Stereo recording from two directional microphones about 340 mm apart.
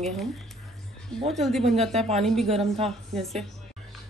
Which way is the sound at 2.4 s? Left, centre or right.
Centre.